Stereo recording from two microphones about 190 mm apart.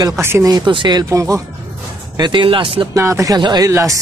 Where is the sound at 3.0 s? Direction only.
15° right (ahead or behind).